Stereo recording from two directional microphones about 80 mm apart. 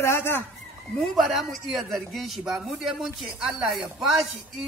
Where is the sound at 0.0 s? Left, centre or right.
Left.